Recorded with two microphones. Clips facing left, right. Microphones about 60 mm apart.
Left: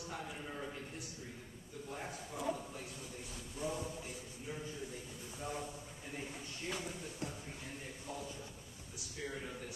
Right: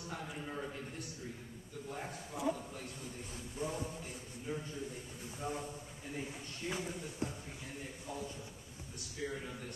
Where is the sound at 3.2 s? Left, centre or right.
Right.